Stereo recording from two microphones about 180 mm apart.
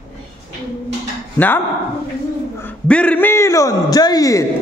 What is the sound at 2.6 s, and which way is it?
A man's voice, 5° left (ahead or behind).